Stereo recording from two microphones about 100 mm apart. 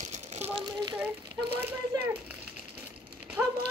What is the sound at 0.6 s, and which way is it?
Speech, 45° right (ahead or behind).